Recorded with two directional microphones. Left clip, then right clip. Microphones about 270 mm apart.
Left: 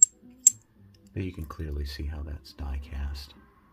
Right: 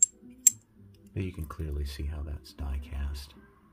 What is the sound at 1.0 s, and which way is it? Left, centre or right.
Speech, centre.